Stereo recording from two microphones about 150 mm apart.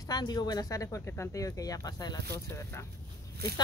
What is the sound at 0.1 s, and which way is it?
Speech, 25° left (ahead or behind).